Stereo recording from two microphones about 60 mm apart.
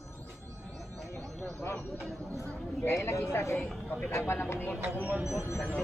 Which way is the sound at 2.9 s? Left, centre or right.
Left.